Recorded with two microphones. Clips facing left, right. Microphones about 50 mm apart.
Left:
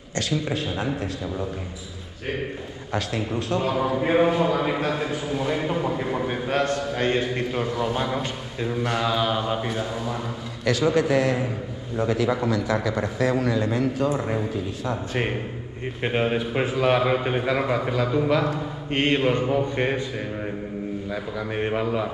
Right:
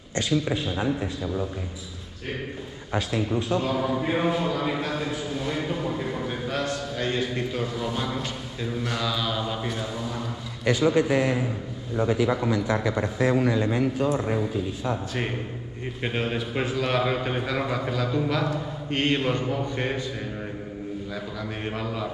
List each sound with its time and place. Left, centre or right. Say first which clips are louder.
1.2 s a man's voice: even; centre
3.5 s a man's voice: left 4 dB; centre
6.6 s a man's voice: left 5 dB; left; by 10.1 s centre
10.7 s a man's voice: left 1 dB; right
12.4 s a man's voice: left 1 dB; right
14.1 s a man's voice: even; centre
16.0 s a man's voice: left 5 dB; centre
21.1 s a man's voice: left 4 dB; centre